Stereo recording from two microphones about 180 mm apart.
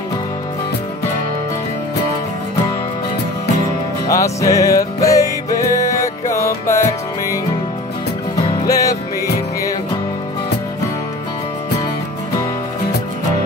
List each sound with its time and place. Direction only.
4.1 s music: 20° left (ahead or behind)
8.5 s music: 20° left (ahead or behind)